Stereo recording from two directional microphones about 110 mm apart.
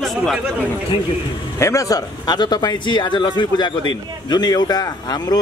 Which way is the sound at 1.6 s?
30° left (ahead or behind).